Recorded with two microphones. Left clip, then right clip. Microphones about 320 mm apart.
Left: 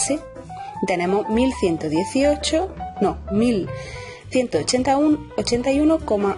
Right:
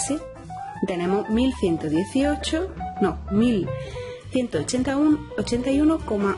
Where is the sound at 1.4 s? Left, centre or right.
Centre.